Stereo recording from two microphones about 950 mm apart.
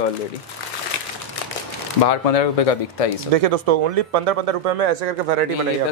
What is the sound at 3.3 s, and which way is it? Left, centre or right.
A man's voice, right.